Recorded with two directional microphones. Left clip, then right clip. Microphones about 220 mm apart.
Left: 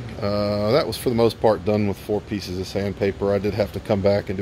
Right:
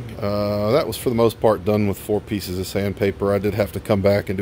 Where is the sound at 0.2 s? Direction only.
15° right (ahead or behind).